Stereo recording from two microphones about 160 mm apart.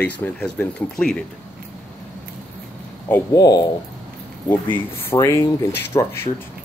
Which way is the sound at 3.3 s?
25° left (ahead or behind).